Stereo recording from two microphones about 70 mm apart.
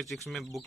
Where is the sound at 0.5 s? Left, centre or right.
Centre.